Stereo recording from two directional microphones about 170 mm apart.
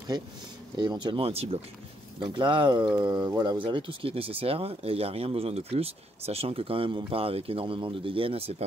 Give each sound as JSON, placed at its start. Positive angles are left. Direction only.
{"t": 0.7, "sound": "speech", "side_deg": -25}